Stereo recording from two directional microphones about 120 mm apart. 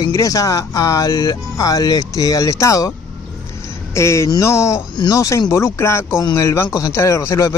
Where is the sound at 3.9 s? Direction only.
25° left (ahead or behind).